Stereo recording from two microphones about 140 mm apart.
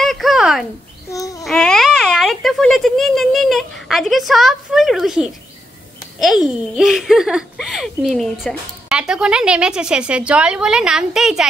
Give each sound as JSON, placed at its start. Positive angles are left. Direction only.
{"t": 0.0, "sound": "a sound", "side_deg": 0}
{"t": 1.1, "sound": "babbling", "side_deg": 25}
{"t": 1.4, "sound": "speech", "side_deg": 5}
{"t": 6.2, "sound": "a child's voice", "side_deg": 0}